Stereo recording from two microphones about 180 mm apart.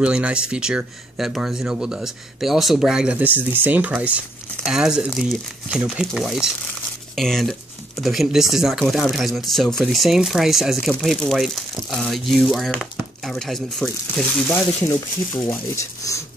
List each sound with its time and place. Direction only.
0.0 s speech: 5° right (ahead or behind)
15.7 s speech: 15° left (ahead or behind)